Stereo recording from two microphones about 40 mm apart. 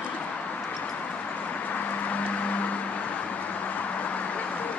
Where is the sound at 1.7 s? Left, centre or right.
Left.